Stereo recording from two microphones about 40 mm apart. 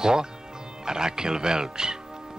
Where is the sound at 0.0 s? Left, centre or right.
Centre.